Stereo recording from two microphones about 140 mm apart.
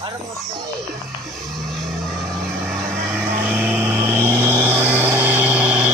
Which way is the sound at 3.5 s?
15° right (ahead or behind).